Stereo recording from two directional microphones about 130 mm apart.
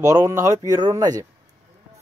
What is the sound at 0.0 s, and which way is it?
Speech, 25° right (ahead or behind).